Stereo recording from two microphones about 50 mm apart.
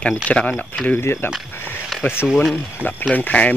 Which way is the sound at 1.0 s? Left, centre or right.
Left.